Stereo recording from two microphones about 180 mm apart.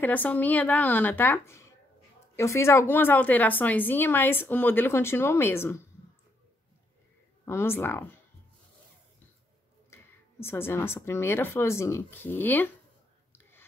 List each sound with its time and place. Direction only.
0.0 s a woman's voice: 10° left (ahead or behind)
7.4 s a woman's voice: 15° left (ahead or behind)
9.9 s music: 15° left (ahead or behind)
10.4 s a woman's voice: 15° left (ahead or behind)
13.3 s whispering: 10° left (ahead or behind)